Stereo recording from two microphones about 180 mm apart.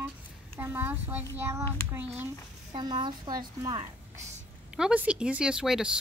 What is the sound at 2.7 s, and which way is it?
A woman's voice, 25° right (ahead or behind).